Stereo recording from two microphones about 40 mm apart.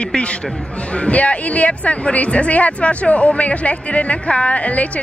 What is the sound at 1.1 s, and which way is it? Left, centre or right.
Speech, left.